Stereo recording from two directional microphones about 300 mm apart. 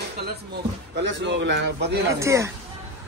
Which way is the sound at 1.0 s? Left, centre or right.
Right.